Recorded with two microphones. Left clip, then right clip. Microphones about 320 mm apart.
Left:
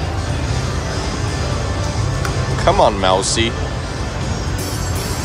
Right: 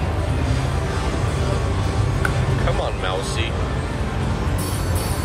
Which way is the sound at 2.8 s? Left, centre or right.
Centre.